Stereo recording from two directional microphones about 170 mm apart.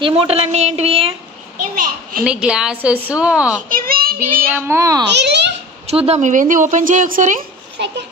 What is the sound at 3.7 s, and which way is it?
Child singing, 60° right (ahead or behind).